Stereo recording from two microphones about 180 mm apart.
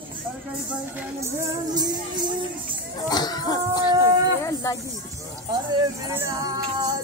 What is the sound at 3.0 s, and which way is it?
Chicken, 20° left (ahead or behind).